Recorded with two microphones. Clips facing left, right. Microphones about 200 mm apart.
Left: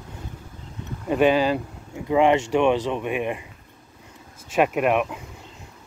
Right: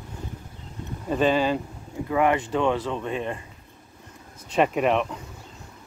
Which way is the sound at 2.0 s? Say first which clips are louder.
Left 4 dB; 20° left (ahead or behind).